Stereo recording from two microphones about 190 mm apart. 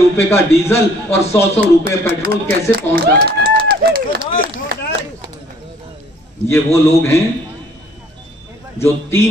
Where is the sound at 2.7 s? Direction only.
55° right (ahead or behind).